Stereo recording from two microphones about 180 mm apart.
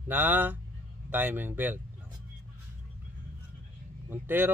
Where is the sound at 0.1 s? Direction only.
10° right (ahead or behind).